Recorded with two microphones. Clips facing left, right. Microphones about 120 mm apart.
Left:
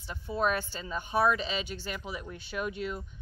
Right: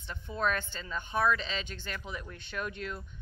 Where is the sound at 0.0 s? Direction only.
10° left (ahead or behind).